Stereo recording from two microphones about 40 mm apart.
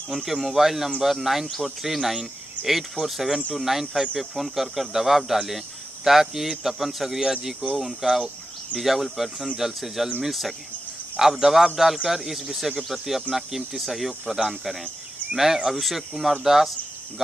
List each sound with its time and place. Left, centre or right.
0.1 s speech: centre